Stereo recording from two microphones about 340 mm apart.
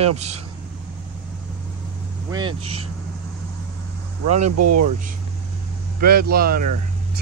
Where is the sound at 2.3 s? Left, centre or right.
Centre.